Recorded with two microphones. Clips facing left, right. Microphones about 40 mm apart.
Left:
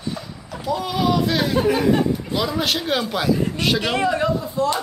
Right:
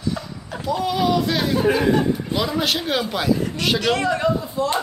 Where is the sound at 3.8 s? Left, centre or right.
Centre.